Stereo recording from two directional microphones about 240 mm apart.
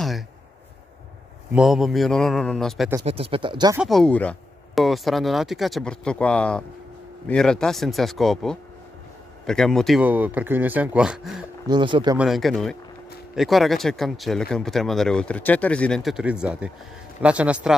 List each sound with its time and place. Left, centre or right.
1.5 s speech: centre
3.1 s speech: right
3.8 s speech: centre
11.6 s speech: centre
12.2 s speech: centre